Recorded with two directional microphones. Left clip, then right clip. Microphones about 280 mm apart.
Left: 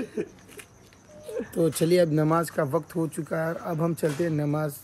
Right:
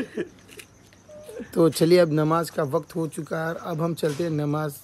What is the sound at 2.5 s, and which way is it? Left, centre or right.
Speech, centre.